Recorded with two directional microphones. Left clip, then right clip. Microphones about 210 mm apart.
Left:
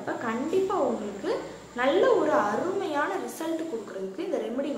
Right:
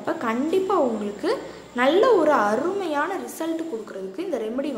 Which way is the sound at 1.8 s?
50° right (ahead or behind).